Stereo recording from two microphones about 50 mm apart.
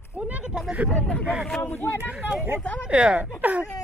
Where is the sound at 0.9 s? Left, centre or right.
Left.